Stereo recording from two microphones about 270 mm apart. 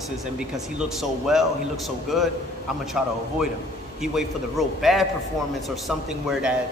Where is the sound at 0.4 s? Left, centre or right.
Centre.